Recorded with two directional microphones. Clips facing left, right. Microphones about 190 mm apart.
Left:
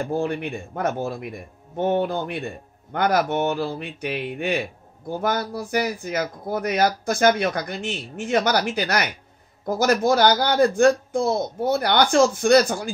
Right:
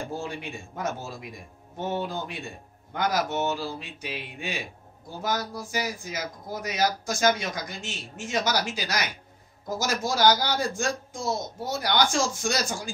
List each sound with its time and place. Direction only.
0.0 s speech: 60° left (ahead or behind)